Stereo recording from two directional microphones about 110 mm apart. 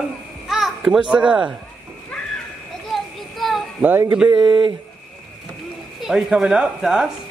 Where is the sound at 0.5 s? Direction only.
Centre (ahead or behind).